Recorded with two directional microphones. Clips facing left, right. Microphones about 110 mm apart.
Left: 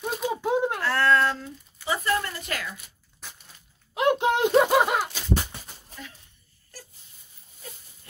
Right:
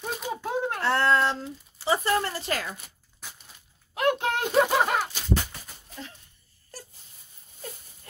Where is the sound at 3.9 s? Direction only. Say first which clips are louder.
Left 3 dB; 20° left (ahead or behind).